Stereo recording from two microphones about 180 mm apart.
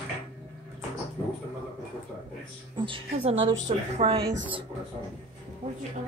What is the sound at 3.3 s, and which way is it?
Speech, 90° right.